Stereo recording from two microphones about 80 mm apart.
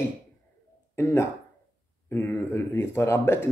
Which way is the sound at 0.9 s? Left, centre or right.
Left.